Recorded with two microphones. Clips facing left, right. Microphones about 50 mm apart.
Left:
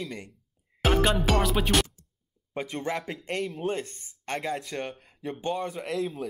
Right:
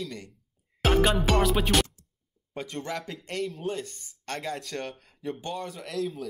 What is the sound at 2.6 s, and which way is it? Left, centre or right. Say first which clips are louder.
Speech: left 3 dB; centre.